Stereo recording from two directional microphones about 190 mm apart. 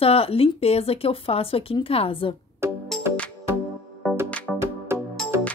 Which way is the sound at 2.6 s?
15° right (ahead or behind).